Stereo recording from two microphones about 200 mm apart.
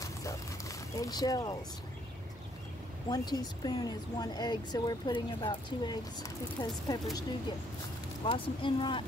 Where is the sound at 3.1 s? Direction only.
20° left (ahead or behind).